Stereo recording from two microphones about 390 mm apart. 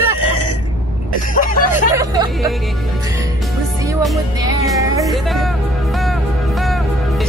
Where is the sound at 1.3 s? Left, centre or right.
Left.